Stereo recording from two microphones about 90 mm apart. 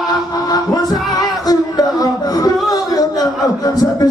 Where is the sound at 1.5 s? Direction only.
45° left (ahead or behind).